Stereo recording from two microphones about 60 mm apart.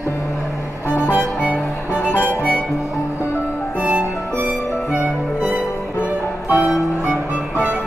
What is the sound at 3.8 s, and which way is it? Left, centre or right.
Music, right.